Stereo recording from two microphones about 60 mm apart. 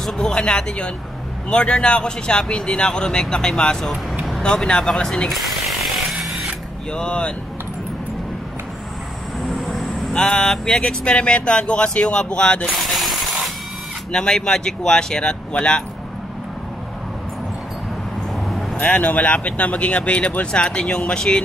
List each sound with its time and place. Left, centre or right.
0.0 s speech: centre
6.1 s drill: centre
6.9 s speech: centre
9.4 s vehicle: centre
10.1 s speech: centre
12.7 s jackhammer: centre
14.1 s speech: centre
18.8 s speech: left